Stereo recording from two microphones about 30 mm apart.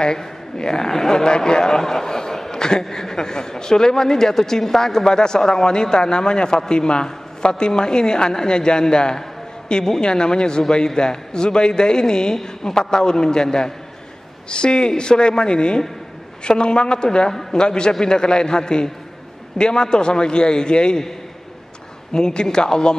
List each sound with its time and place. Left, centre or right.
0.2 s a man's voice: left
14.5 s a woman's voice: left
22.1 s a man's voice: left